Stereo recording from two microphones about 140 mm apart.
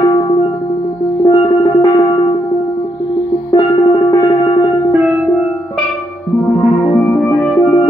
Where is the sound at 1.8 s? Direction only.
30° left (ahead or behind).